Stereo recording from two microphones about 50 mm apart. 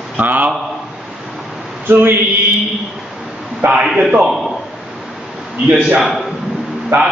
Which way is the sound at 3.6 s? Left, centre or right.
Right.